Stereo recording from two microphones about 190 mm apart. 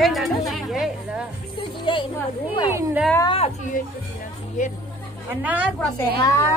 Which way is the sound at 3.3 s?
35° left (ahead or behind).